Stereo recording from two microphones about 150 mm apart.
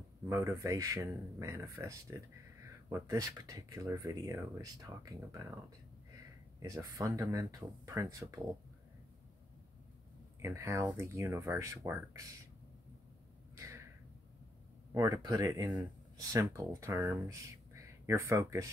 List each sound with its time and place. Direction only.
0.3 s speech: 20° right (ahead or behind)
10.4 s speech: 15° right (ahead or behind)
15.0 s speech: 25° right (ahead or behind)